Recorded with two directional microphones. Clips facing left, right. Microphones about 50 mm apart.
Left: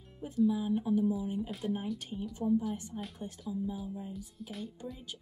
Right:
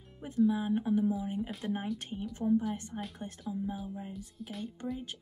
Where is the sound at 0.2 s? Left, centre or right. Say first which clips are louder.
Right 1 dB; right.